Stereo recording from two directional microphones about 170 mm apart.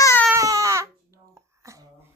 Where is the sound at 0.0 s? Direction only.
15° left (ahead or behind).